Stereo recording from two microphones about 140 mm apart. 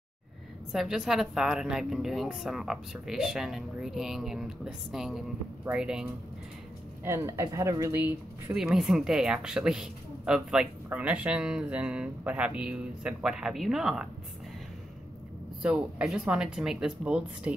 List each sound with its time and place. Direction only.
0.7 s a woman's voice: 5° right (ahead or behind)
7.1 s speech: 20° right (ahead or behind)
8.5 s a woman's voice: 5° right (ahead or behind)
15.6 s speech: 5° right (ahead or behind)